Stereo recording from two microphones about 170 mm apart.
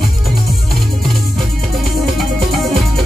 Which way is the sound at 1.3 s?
Centre (ahead or behind).